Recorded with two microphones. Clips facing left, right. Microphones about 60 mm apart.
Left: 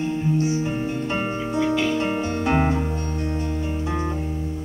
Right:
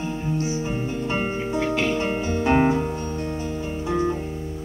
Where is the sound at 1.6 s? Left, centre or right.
Right.